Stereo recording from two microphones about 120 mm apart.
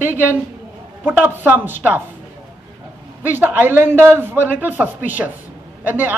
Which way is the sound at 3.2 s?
15° right (ahead or behind).